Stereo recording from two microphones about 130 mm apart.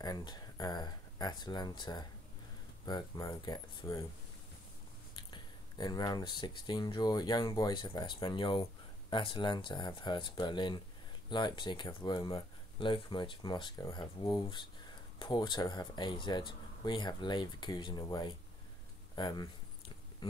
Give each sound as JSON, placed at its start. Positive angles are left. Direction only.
{"t": 0.0, "sound": "speech", "side_deg": 30}
{"t": 5.1, "sound": "speech", "side_deg": 35}